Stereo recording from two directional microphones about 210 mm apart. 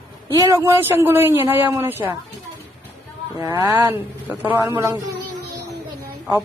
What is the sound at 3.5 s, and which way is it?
Speech, 10° right (ahead or behind).